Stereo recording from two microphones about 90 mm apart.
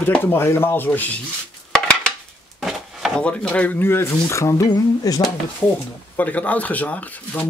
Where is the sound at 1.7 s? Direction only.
10° left (ahead or behind).